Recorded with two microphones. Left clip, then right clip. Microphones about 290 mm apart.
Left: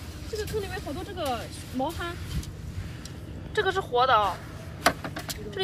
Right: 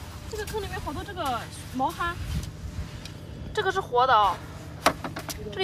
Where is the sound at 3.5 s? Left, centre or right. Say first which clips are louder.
Right 1 dB; right.